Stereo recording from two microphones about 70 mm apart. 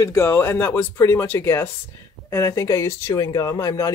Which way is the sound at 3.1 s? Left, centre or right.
Left.